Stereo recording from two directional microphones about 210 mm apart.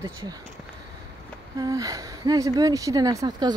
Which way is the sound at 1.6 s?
15° right (ahead or behind).